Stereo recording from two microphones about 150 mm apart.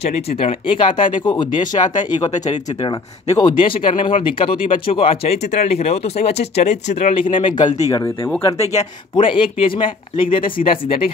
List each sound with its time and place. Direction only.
0.4 s speech: 35° left (ahead or behind)
9.1 s speech: 35° left (ahead or behind)